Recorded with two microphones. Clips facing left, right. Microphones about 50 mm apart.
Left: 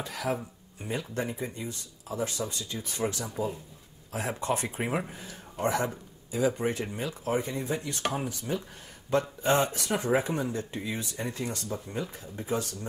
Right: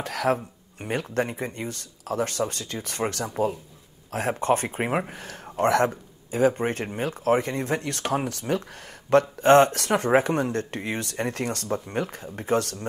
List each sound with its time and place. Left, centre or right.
0.0 s speech: right
4.1 s speech: right
5.1 s speech: right
6.3 s speech: right